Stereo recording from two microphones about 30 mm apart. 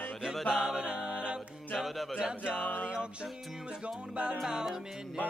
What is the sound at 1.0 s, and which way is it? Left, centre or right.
Music, right.